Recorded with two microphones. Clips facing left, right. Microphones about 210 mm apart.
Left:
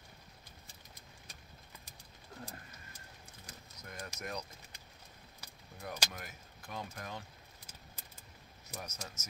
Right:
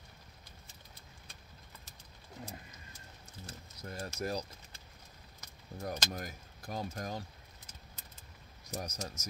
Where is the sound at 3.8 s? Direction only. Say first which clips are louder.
Right 7 dB; 30° right (ahead or behind).